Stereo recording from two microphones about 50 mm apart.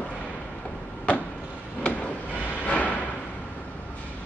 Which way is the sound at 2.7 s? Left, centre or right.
Left.